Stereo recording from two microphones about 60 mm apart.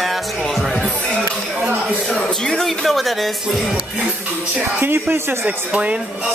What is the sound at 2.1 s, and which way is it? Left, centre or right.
Speech, centre.